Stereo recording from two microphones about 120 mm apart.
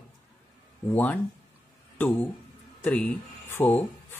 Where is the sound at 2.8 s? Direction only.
15° left (ahead or behind).